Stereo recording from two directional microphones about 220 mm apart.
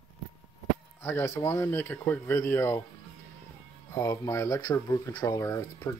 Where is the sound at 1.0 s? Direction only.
10° left (ahead or behind).